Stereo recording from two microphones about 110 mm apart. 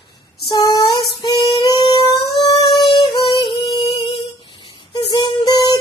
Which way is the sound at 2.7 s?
35° left (ahead or behind).